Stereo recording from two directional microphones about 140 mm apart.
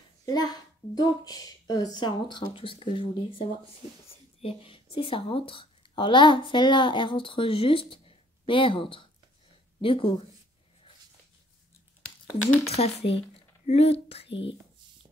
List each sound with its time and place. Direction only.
0.2 s a child's voice: 30° left (ahead or behind)
12.6 s speech: 50° left (ahead or behind)